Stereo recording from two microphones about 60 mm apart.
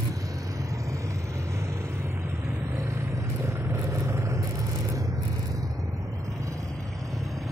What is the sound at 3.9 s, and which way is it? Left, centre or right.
Vehicle, right.